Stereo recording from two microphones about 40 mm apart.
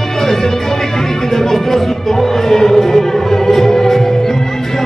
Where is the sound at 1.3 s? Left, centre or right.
Centre.